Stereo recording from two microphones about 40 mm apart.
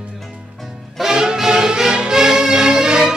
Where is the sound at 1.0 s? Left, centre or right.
Centre.